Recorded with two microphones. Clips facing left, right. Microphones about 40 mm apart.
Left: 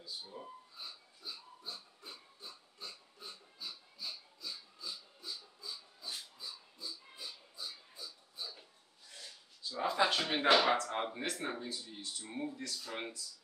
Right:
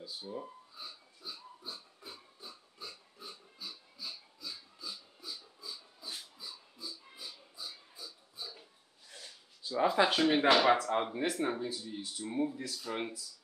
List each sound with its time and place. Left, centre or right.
0.0 s pig: centre
9.6 s a sound: centre
9.8 s speech: centre